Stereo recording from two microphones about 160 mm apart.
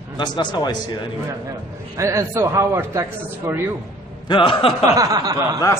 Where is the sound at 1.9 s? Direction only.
20° right (ahead or behind).